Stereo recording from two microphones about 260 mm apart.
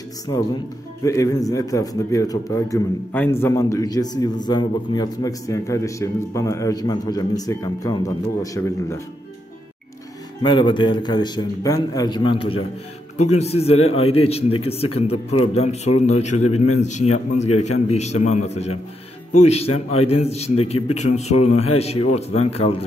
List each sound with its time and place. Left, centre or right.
0.3 s a man's voice: centre
10.4 s a man's voice: centre
17.5 s a man's voice: left
17.8 s a man's voice: left